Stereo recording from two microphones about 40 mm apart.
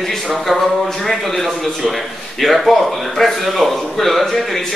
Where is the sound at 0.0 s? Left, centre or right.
Centre.